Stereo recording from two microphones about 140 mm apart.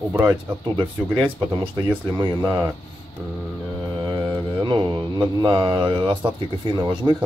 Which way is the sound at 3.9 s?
30° right (ahead or behind).